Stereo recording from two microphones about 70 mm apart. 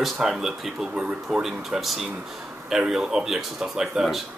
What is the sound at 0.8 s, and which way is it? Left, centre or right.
Speech, centre.